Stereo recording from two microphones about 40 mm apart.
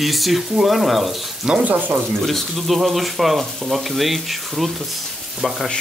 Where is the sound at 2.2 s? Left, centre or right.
Centre.